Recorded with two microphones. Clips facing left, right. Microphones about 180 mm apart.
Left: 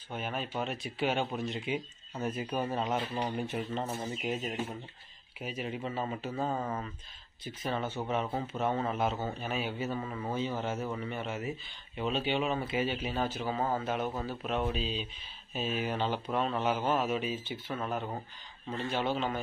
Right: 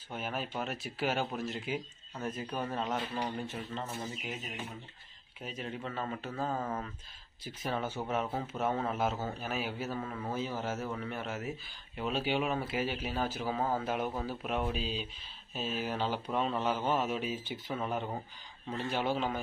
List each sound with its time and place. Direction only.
0.1 s speech: 5° right (ahead or behind)
2.2 s speech: 10° left (ahead or behind)
3.9 s speech: 30° left (ahead or behind)
5.4 s speech: 10° left (ahead or behind)
10.3 s speech: 5° right (ahead or behind)
17.3 s speech: 5° right (ahead or behind)